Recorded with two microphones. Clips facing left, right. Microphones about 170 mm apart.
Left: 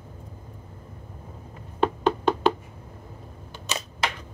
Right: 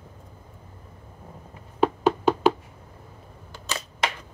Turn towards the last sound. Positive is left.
turn(degrees=20)  # may be behind; listen again after turning